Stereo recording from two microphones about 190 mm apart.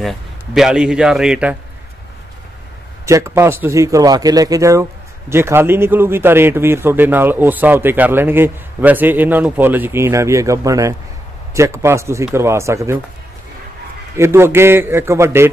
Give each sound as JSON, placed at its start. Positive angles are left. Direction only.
{"t": 0.0, "sound": "a man's voice", "side_deg": 0}
{"t": 3.1, "sound": "a man's voice", "side_deg": -15}
{"t": 14.1, "sound": "a man's voice", "side_deg": -15}